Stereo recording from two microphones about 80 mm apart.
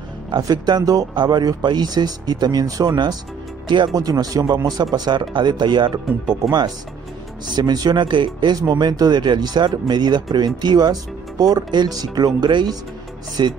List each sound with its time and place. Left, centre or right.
0.4 s speech: right
3.6 s speech: right
3.9 s speech: right
7.5 s speech: right
8.5 s speech: right